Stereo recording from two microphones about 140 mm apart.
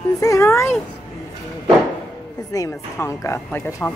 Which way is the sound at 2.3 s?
25° left (ahead or behind).